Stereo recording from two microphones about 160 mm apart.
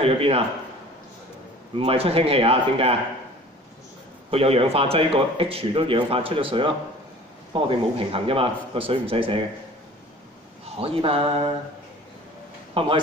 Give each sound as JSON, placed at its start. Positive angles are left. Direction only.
{"t": 0.0, "sound": "a man's voice", "side_deg": -35}
{"t": 1.8, "sound": "a man's voice", "side_deg": -35}
{"t": 4.3, "sound": "a man's voice", "side_deg": -35}
{"t": 10.6, "sound": "speech", "side_deg": -35}
{"t": 12.7, "sound": "a man's voice", "side_deg": -30}